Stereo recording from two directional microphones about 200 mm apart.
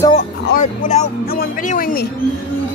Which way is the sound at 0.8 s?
40° left (ahead or behind).